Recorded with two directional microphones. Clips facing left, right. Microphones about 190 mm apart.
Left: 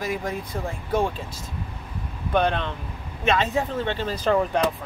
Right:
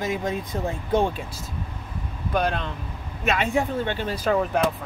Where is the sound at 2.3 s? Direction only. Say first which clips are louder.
Left 2 dB; centre (ahead or behind).